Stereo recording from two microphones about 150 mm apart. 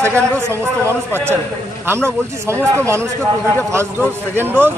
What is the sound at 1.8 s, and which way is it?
Speech, 15° right (ahead or behind).